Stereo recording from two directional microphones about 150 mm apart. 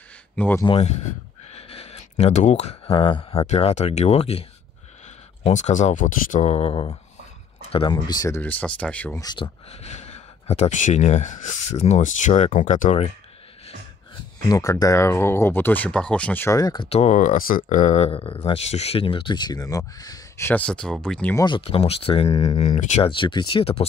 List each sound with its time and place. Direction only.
0.4 s speech: 10° left (ahead or behind)
0.7 s speech: 45° left (ahead or behind); by 8.4 s 25° left (ahead or behind)
8.4 s speech: 10° left (ahead or behind)
9.2 s speech: 30° left (ahead or behind)
9.7 s speech: 45° left (ahead or behind)
14.5 s speech: 25° left (ahead or behind)
16.9 s speech: 50° left (ahead or behind); by 21.4 s 5° left (ahead or behind)
21.4 s speech: 35° left (ahead or behind); by 23.0 s 50° left (ahead or behind)
23.0 s speech: 35° left (ahead or behind)